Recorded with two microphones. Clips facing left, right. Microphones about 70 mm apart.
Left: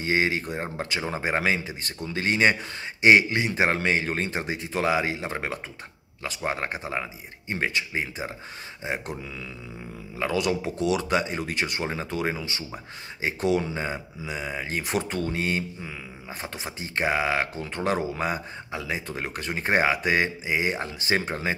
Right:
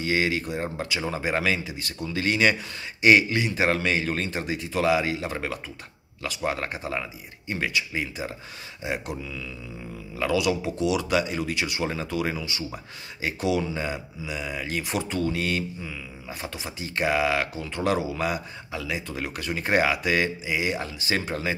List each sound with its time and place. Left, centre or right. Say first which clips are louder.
0.0 s speech: even; left
10.3 s speech: right 2 dB; left
11.8 s speech: right 1 dB; left